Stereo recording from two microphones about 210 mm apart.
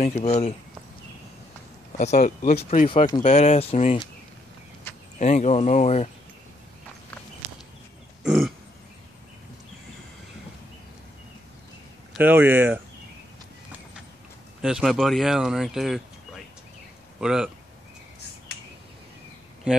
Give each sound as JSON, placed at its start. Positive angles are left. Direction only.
{"t": 0.0, "sound": "speech", "side_deg": 35}
{"t": 1.9, "sound": "speech", "side_deg": 35}
{"t": 4.9, "sound": "a sound", "side_deg": 10}
{"t": 5.2, "sound": "speech", "side_deg": 35}
{"t": 8.2, "sound": "burping", "side_deg": -5}
{"t": 12.1, "sound": "speech", "side_deg": -10}
{"t": 14.6, "sound": "speech", "side_deg": 0}
{"t": 17.2, "sound": "speech", "side_deg": -5}